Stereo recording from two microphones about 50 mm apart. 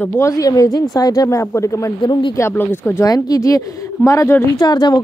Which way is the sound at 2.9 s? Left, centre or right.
Left.